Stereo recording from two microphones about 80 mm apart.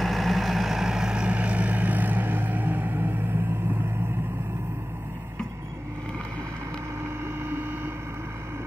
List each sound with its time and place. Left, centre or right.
0.0 s vehicle: centre; by 3.7 s right
7.4 s vehicle: right